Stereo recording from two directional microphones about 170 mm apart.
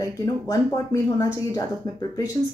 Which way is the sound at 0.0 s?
20° left (ahead or behind).